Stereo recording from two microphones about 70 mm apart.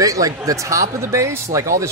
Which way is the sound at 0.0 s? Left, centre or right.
Right.